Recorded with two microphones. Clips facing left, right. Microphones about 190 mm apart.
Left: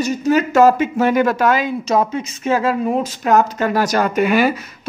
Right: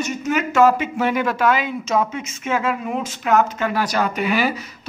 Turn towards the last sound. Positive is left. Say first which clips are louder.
# left 5 dB
turn(degrees=50)  # may be behind; listen again after turning